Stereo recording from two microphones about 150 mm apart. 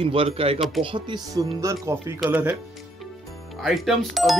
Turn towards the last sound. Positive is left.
turn(degrees=0)  # may be behind; listen again after turning